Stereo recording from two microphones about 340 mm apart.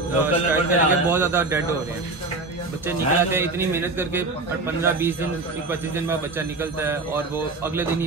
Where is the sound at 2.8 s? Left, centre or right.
Centre.